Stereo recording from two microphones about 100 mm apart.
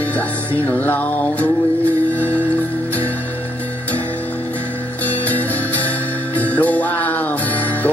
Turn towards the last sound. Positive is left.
turn(degrees=15)  # may be behind; listen again after turning